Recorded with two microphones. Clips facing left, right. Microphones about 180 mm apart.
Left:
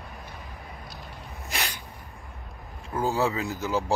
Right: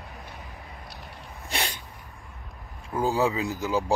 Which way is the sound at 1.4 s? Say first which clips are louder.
Right 2 dB; 30° right (ahead or behind).